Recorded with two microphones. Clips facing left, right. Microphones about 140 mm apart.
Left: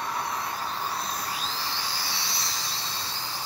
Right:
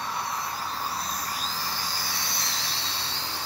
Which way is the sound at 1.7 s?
45° right (ahead or behind).